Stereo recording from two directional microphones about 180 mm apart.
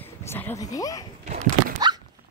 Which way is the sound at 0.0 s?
10° left (ahead or behind).